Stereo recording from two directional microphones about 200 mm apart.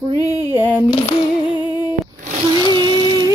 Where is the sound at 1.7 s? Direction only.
20° left (ahead or behind).